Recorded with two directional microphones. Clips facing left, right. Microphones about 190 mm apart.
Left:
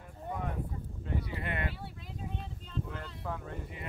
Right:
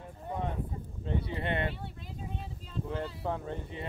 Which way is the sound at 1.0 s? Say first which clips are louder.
Right 4 dB; 30° right (ahead or behind).